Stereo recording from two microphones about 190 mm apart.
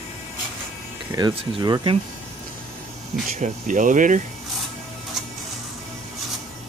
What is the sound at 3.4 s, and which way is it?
Speech, 45° right (ahead or behind).